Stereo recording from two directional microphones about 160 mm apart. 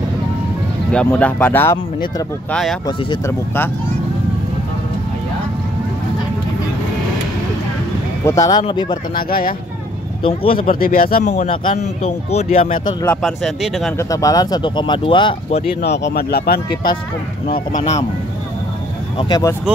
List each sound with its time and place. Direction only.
0.9 s speech: 10° left (ahead or behind)
3.3 s speech: 15° left (ahead or behind)
8.3 s speech: 20° left (ahead or behind)
9.3 s speech: 65° left (ahead or behind)
10.2 s speech: 35° left (ahead or behind)
10.7 s speech: 65° left (ahead or behind); by 12.7 s 40° left (ahead or behind)
13.2 s speech: centre (ahead or behind)
13.9 s speech: 20° left (ahead or behind)
15.8 s speech: 90° left
19.1 s speech: 25° left (ahead or behind)